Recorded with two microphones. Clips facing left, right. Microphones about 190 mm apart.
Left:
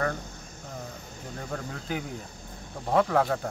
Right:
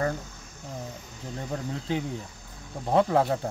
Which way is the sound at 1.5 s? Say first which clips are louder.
Right 4 dB; 25° right (ahead or behind).